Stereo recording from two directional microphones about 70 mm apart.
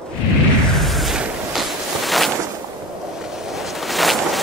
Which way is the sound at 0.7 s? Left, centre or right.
Centre.